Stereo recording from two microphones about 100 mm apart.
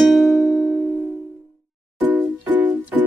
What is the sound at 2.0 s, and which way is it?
Music, 20° right (ahead or behind).